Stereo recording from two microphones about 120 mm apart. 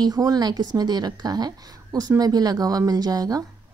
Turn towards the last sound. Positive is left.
turn(degrees=-30)  # may be behind; listen again after turning